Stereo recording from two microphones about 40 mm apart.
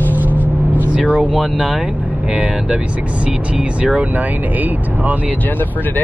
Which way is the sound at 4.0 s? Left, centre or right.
Right.